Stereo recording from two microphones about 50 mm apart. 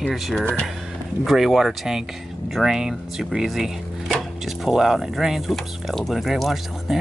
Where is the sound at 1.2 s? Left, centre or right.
Centre.